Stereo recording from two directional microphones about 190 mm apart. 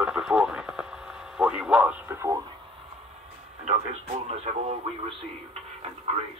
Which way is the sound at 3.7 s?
35° right (ahead or behind).